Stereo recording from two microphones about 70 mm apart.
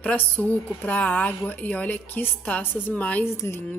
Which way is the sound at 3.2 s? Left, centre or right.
Left.